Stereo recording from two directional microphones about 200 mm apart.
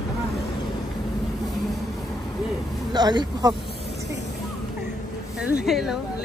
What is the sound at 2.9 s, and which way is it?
Speech, 20° right (ahead or behind).